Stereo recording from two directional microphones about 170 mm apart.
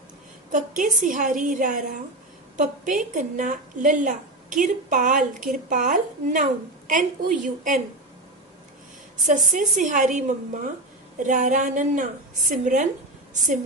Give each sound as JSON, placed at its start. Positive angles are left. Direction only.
{"t": 0.5, "sound": "a woman's voice", "side_deg": -45}
{"t": 9.5, "sound": "a woman's voice", "side_deg": -45}